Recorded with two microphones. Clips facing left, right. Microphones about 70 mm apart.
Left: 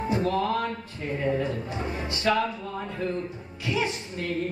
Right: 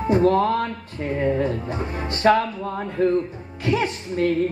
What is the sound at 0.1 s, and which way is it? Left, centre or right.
Speech, right.